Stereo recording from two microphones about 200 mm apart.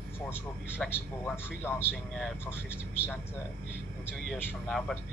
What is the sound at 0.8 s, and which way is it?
A man's voice, 10° left (ahead or behind).